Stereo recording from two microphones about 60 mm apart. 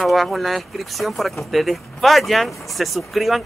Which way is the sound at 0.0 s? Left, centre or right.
Centre.